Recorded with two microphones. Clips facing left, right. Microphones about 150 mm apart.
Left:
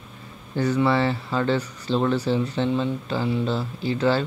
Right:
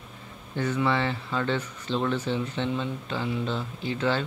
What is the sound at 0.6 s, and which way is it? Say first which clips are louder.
Speech: left 5 dB; 35° left (ahead or behind).